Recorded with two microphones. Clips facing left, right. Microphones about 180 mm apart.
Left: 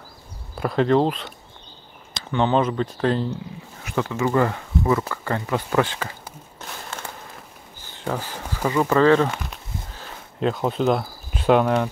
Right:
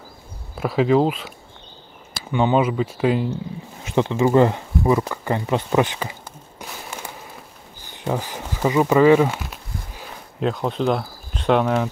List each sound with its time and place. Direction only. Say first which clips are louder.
0.6 s speech: right 1 dB; 5° right (ahead or behind)
3.8 s speech: right 5 dB; 20° right (ahead or behind)
6.6 s a sound: right 1 dB; 15° right (ahead or behind)